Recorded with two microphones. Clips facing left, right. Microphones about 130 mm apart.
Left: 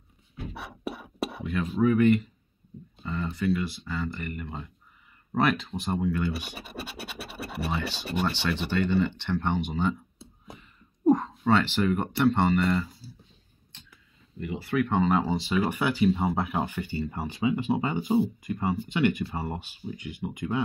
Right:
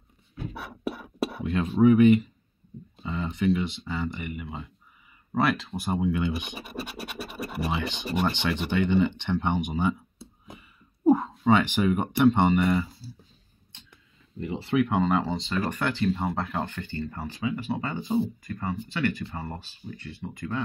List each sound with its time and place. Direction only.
0.5 s a sound: centre (ahead or behind)
1.8 s speech: 20° right (ahead or behind)
5.3 s scratch: centre (ahead or behind)
6.0 s speech: 20° right (ahead or behind)
6.6 s scratch: centre (ahead or behind)
7.7 s speech: 15° right (ahead or behind)
10.5 s a sound: 10° right (ahead or behind)
12.6 s scratch: 5° right (ahead or behind)
14.4 s speech: 30° right (ahead or behind)
14.9 s speech: centre (ahead or behind); by 20.6 s 15° left (ahead or behind)